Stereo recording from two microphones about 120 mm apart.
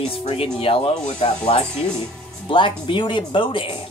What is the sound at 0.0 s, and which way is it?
Speech, 50° left (ahead or behind).